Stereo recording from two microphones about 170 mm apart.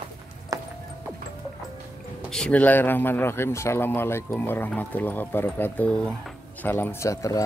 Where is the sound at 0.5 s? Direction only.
20° right (ahead or behind).